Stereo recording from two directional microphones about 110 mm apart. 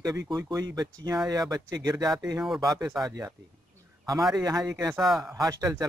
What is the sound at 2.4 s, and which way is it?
Speech, centre (ahead or behind).